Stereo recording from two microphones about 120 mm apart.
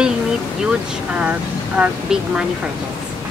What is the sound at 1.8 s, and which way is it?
Speech, 5° right (ahead or behind).